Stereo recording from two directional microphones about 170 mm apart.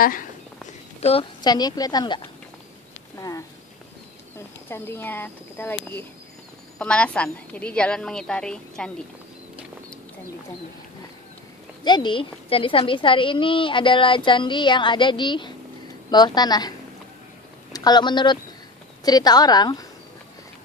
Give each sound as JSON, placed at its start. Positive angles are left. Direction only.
{"t": 0.0, "sound": "speech", "side_deg": 55}
{"t": 1.4, "sound": "a woman's voice", "side_deg": 25}
{"t": 4.6, "sound": "speech", "side_deg": 15}
{"t": 6.8, "sound": "a woman's voice", "side_deg": 5}
{"t": 11.8, "sound": "a woman's voice", "side_deg": 25}
{"t": 17.7, "sound": "a woman's voice", "side_deg": 25}